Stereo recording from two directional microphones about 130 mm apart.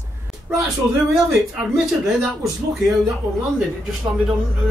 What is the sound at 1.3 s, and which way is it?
Speech, centre (ahead or behind).